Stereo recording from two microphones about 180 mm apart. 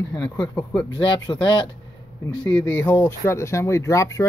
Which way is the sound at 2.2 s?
10° left (ahead or behind).